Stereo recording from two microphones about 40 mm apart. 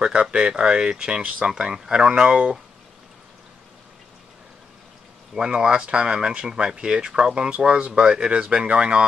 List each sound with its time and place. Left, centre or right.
0.0 s speech: right
5.3 s speech: right